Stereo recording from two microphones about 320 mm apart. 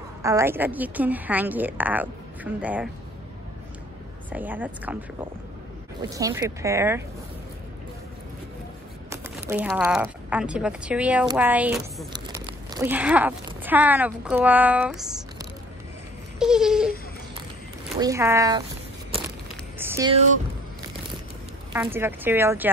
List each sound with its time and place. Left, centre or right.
0.2 s speech: centre
4.3 s speech: centre
6.0 s speech: centre
9.1 s speech: centre
16.3 s speech: centre
17.9 s speech: centre
19.8 s a sound: centre
21.7 s speech: centre